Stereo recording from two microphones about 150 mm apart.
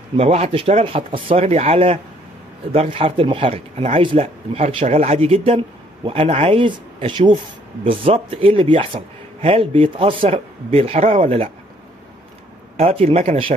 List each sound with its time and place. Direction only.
0.2 s speech: 45° right (ahead or behind)
12.7 s speech: 45° right (ahead or behind)